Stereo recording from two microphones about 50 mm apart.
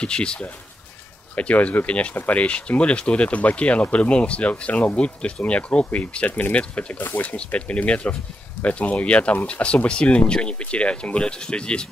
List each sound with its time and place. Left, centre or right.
0.0 s speech: centre
1.3 s speech: left